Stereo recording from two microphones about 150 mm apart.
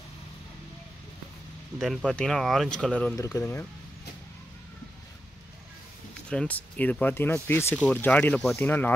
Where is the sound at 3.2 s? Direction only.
20° left (ahead or behind).